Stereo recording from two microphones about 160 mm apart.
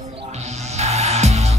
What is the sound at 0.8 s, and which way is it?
Music, 40° right (ahead or behind).